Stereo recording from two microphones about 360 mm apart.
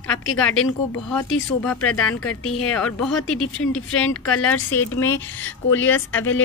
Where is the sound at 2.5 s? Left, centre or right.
Centre.